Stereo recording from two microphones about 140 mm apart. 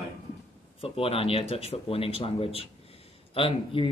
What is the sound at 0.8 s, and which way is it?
Speech, 45° left (ahead or behind).